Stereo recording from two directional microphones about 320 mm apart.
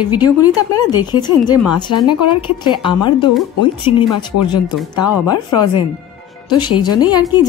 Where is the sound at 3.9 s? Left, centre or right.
Left.